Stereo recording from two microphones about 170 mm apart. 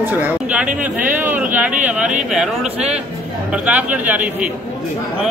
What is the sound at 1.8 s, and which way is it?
A man's voice, 10° right (ahead or behind).